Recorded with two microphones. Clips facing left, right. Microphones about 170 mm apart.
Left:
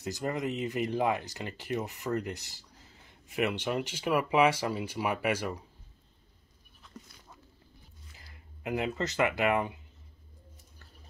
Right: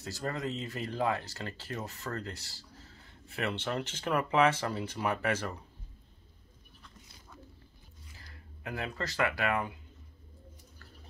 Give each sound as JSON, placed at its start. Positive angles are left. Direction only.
{"t": 0.0, "sound": "speech", "side_deg": 15}
{"t": 8.2, "sound": "speech", "side_deg": 20}